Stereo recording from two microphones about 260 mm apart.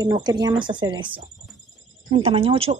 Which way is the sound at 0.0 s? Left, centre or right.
Centre.